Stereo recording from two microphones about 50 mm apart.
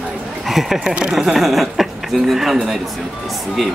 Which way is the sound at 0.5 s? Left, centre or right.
Centre.